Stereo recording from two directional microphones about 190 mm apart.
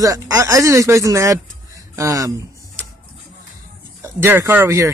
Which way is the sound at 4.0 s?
15° right (ahead or behind).